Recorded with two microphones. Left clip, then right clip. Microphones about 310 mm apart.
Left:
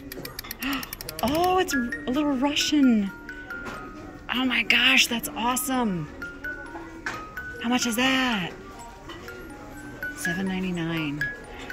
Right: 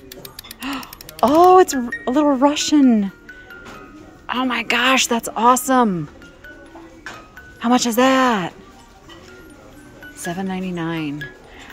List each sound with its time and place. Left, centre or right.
0.7 s mechanisms: centre
2.0 s speech: centre
4.3 s speech: centre
7.9 s speech: centre
10.2 s speech: centre